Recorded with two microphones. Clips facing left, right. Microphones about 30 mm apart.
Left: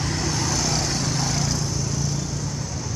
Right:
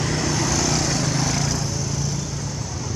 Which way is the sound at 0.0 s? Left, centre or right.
Right.